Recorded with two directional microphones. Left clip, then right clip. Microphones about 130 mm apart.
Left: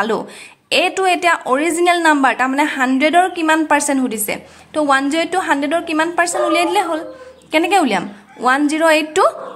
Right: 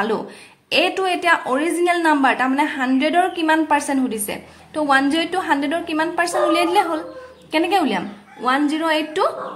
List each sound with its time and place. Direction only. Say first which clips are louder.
0.7 s a woman's voice: left 4 dB; 30° left (ahead or behind)